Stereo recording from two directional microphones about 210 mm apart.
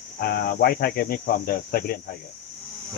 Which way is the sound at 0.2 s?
45° left (ahead or behind).